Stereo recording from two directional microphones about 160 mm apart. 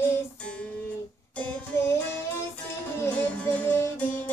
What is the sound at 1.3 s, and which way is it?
Music, 10° left (ahead or behind).